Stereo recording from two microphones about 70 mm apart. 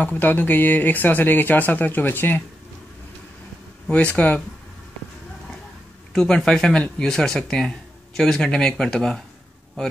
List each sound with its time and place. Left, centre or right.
0.0 s speech: left
3.9 s speech: centre
6.1 s speech: centre